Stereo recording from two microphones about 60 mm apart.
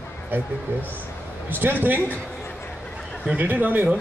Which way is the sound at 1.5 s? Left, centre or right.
Right.